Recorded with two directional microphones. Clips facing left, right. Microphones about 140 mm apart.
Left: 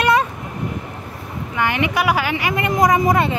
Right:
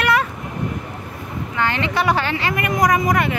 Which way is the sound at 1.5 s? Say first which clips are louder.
Left 2 dB; 15° left (ahead or behind).